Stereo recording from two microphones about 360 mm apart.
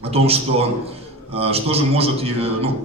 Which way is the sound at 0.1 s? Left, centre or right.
Centre.